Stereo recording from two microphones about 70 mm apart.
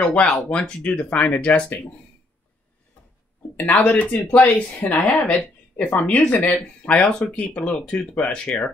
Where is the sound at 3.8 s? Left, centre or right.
Left.